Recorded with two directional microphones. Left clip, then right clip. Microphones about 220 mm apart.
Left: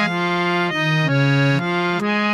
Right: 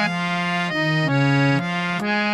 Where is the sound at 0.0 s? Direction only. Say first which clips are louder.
Left 3 dB; 10° left (ahead or behind).